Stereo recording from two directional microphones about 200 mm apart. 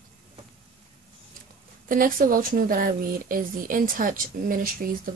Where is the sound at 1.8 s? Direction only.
45° right (ahead or behind).